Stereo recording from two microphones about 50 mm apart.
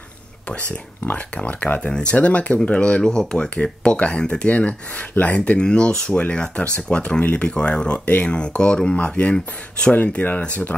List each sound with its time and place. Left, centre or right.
1.0 s speech: left
9.9 s speech: left